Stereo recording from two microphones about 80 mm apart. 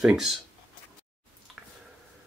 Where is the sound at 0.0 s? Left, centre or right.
Centre.